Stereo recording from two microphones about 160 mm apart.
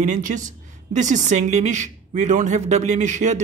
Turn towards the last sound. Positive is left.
turn(degrees=-50)  # may be behind; listen again after turning